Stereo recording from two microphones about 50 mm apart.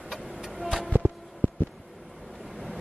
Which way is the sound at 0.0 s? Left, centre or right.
Centre.